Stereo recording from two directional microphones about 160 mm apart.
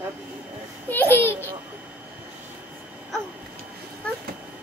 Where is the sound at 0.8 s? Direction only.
10° left (ahead or behind).